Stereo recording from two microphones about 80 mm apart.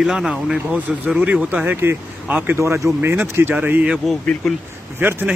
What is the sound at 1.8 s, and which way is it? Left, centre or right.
Speech, right.